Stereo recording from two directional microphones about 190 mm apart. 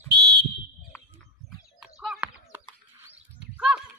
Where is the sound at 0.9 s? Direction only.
10° left (ahead or behind).